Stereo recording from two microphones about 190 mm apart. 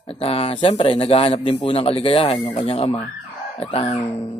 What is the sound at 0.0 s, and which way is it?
A man's voice, 30° left (ahead or behind).